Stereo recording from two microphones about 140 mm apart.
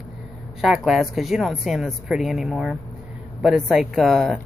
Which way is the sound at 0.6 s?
Centre (ahead or behind).